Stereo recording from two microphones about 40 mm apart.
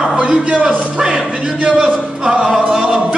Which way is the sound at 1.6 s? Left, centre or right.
Right.